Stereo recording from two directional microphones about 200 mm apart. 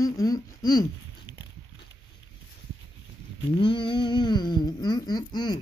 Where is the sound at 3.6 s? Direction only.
25° left (ahead or behind).